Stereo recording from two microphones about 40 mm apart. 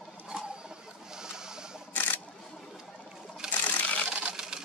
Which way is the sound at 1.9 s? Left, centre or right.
Left.